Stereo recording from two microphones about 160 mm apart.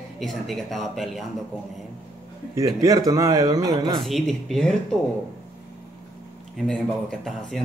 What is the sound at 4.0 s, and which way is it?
Speech, centre (ahead or behind).